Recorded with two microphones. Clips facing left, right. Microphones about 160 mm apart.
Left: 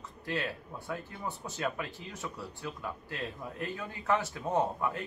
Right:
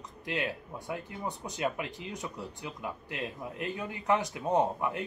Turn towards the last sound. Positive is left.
turn(degrees=-15)  # may be behind; listen again after turning